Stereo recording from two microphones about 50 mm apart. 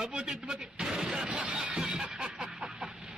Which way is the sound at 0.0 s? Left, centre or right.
Centre.